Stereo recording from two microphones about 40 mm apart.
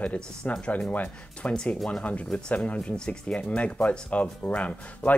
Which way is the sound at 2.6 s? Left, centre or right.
Left.